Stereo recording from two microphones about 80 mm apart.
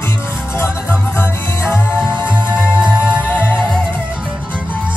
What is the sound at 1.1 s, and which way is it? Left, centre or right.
Music, left.